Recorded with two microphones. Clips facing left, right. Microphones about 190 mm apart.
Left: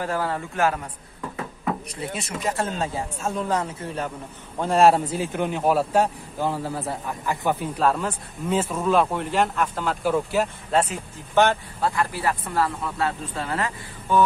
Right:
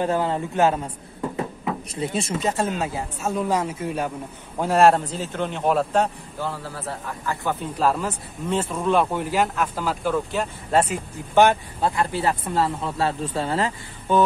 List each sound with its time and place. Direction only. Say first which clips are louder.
0.0 s speech: right 4 dB; 20° right (ahead or behind)
2.8 s speech: even; 5° right (ahead or behind)
6.4 s a man's voice: left 4 dB; 15° left (ahead or behind)
7.7 s a man's voice: even; centre (ahead or behind)
10.7 s speech: right 2 dB; 10° right (ahead or behind); by 14.2 s 25° right (ahead or behind)